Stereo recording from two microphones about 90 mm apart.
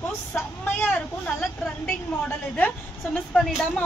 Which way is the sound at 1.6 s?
5° left (ahead or behind).